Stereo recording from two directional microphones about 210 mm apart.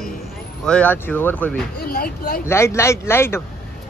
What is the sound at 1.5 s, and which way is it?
Speech, 45° left (ahead or behind).